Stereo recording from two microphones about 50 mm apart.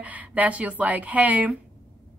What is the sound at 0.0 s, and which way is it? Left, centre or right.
Speech, right.